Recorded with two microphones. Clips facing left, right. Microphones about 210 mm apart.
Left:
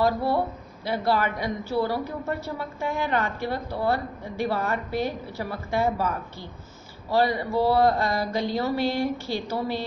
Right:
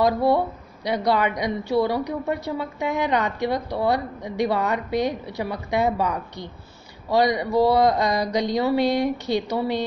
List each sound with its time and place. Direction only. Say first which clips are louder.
0.8 s a woman's voice: right 3 dB; 20° right (ahead or behind)